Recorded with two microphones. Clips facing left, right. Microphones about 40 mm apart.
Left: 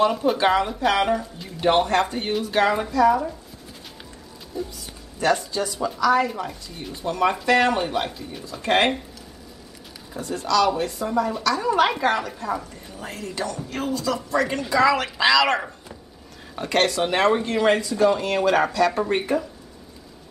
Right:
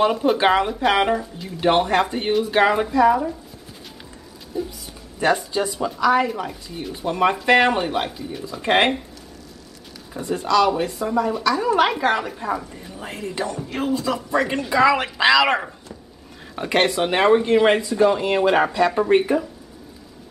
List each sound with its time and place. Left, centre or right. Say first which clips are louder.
0.0 s a woman's voice: right 2 dB; centre
4.5 s a woman's voice: right 3 dB; centre
8.5 s speech: right 2 dB; centre
10.2 s a woman's voice: right 2 dB; right
12.2 s a woman's voice: right 2 dB; centre